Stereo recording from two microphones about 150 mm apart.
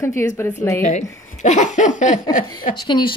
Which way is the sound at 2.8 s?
30° left (ahead or behind).